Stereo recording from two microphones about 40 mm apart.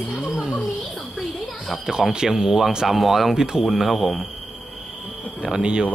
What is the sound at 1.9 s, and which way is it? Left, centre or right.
Speech, centre.